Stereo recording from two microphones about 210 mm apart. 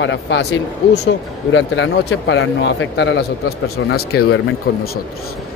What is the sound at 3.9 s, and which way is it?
Speech, 50° left (ahead or behind).